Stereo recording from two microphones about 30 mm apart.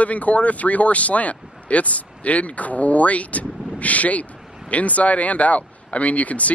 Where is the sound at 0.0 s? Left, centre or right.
Left.